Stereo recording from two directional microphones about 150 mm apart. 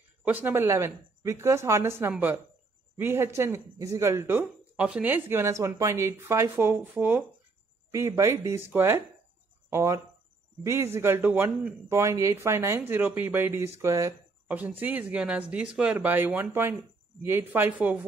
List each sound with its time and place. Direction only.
0.2 s speech: 10° right (ahead or behind)
14.5 s speech: 10° right (ahead or behind)